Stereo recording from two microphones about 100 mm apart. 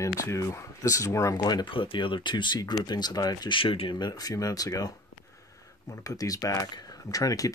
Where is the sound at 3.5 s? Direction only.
65° left (ahead or behind).